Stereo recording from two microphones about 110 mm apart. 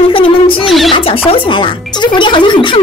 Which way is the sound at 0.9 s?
55° left (ahead or behind).